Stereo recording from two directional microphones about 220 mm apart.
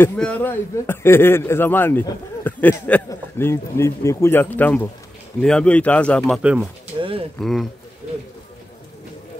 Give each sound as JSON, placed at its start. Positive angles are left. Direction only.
{"t": 0.0, "sound": "speech", "side_deg": 10}
{"t": 7.0, "sound": "speech", "side_deg": -25}
{"t": 7.3, "sound": "speech", "side_deg": 0}